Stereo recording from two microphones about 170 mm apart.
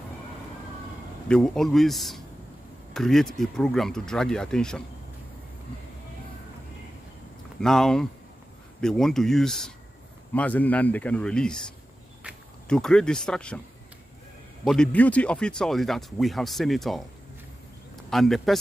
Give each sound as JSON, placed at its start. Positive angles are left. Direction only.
{"t": 1.3, "sound": "speech", "side_deg": 5}
{"t": 7.6, "sound": "speech", "side_deg": 5}
{"t": 12.6, "sound": "speech", "side_deg": 5}
{"t": 14.6, "sound": "speech", "side_deg": 5}
{"t": 18.1, "sound": "speech", "side_deg": 0}